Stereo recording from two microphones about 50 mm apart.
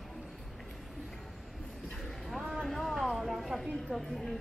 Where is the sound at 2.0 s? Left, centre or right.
Centre.